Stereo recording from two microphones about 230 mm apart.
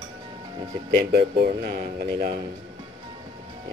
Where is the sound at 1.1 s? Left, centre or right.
Right.